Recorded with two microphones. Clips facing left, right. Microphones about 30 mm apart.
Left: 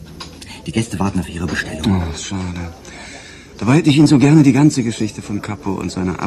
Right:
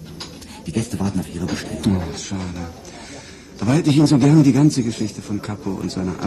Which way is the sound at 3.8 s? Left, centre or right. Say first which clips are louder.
Left 3 dB; left.